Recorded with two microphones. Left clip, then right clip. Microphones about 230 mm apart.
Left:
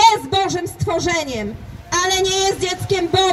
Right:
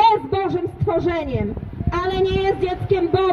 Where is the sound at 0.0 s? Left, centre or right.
Left.